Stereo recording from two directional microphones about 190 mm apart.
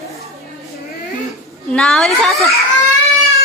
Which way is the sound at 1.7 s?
5° left (ahead or behind).